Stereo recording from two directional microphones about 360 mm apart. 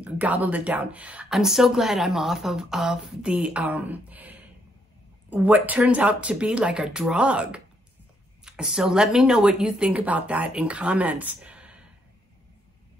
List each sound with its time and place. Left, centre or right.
0.0 s speech: centre